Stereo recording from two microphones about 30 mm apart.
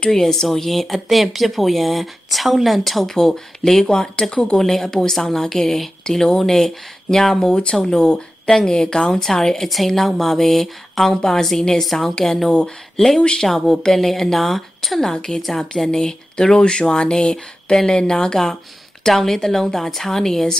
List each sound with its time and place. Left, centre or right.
0.1 s a woman's voice: centre
3.9 s speech: left
4.6 s a woman's voice: centre
8.9 s a woman's voice: centre
9.7 s a woman's voice: centre
11.8 s a woman's voice: centre
12.4 s speech: left
13.4 s a woman's voice: centre
15.9 s a woman's voice: left